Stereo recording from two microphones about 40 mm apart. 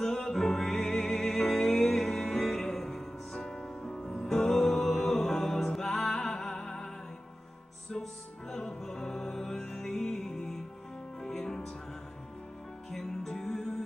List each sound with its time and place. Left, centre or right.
0.0 s music: centre
8.0 s music: centre
12.9 s music: centre